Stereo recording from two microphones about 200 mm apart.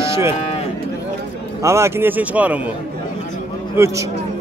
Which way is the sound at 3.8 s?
10° right (ahead or behind).